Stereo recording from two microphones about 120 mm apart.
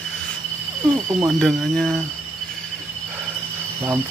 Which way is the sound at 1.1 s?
20° right (ahead or behind).